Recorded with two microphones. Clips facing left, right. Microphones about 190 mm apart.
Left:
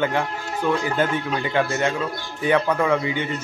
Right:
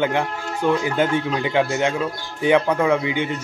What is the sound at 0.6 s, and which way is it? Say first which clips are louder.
Speech: right 3 dB; 20° right (ahead or behind).